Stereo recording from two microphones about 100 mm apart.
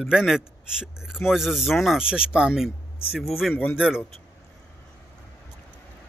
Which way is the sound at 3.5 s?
20° left (ahead or behind).